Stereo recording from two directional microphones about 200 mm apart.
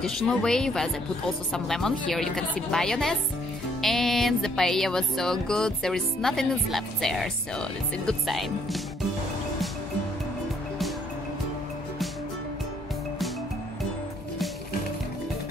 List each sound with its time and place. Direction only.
0.0 s music: centre (ahead or behind)